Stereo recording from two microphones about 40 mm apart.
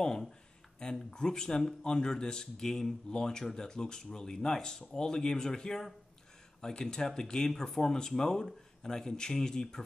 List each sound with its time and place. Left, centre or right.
1.1 s speech: centre